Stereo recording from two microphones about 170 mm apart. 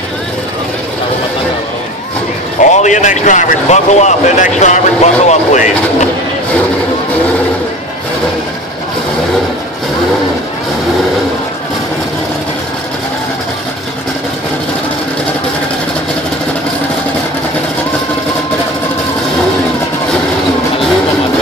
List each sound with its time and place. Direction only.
2.7 s speech: 45° left (ahead or behind)